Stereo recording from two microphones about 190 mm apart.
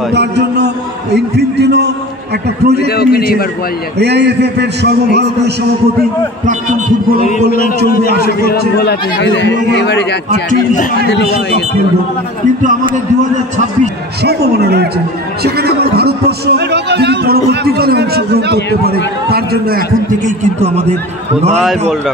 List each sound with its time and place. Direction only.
0.1 s a man's voice: 65° right (ahead or behind)
1.1 s a sound: 60° right (ahead or behind)
2.9 s a sound: 55° left (ahead or behind)
4.0 s a man's voice: 60° right (ahead or behind)
7.5 s a man's voice: 50° left (ahead or behind)
14.2 s a man's voice: 60° right (ahead or behind); by 20.8 s 40° right (ahead or behind)